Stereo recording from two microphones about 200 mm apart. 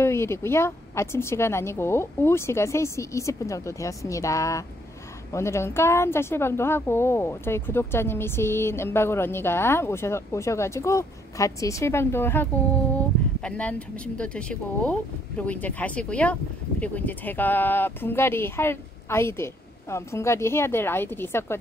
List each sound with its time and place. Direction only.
0.0 s a woman's voice: 15° left (ahead or behind)